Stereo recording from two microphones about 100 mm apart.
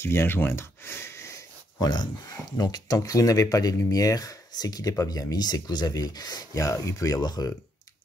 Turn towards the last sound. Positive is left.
turn(degrees=40)  # may be behind; listen again after turning